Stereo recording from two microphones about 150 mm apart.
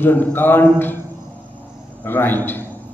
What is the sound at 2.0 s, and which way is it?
Speech, 15° left (ahead or behind).